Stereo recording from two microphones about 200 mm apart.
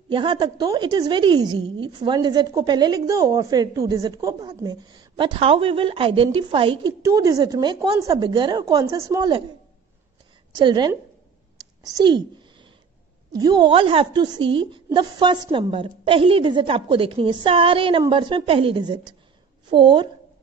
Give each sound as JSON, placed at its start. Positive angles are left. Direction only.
{"t": 0.1, "sound": "a woman's voice", "side_deg": -25}
{"t": 10.5, "sound": "a woman's voice", "side_deg": -20}
{"t": 11.5, "sound": "a sound", "side_deg": -20}
{"t": 13.4, "sound": "a woman's voice", "side_deg": -20}